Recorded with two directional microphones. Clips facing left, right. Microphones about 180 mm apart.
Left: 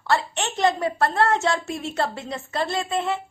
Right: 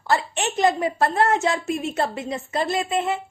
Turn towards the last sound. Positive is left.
turn(degrees=-20)  # may be behind; listen again after turning